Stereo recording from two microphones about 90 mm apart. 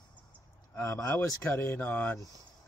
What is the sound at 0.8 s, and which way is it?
Speech, 35° left (ahead or behind).